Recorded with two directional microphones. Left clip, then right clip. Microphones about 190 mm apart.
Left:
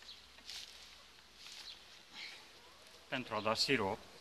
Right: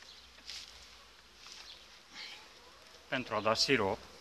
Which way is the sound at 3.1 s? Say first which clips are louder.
Right 5 dB; 15° right (ahead or behind).